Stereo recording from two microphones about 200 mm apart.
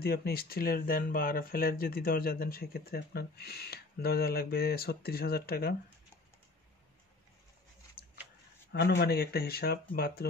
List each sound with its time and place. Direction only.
0.0 s speech: 50° left (ahead or behind)
8.7 s speech: 55° left (ahead or behind)